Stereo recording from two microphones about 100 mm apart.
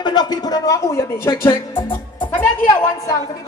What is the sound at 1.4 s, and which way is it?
Speech, 50° left (ahead or behind).